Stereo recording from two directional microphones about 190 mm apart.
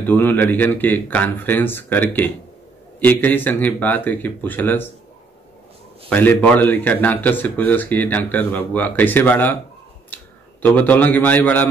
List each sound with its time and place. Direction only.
0.0 s speech: 10° left (ahead or behind)
6.0 s a man's voice: 10° left (ahead or behind)